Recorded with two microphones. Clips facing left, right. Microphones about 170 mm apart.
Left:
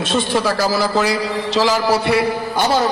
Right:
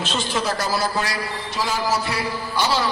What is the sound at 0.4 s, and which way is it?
Speech, 70° left (ahead or behind).